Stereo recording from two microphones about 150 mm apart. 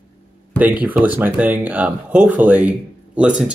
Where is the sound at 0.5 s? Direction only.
10° right (ahead or behind).